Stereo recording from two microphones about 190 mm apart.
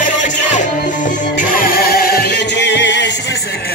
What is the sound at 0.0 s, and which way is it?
Music, 40° left (ahead or behind).